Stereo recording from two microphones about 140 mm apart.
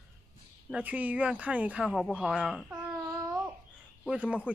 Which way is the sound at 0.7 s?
10° right (ahead or behind).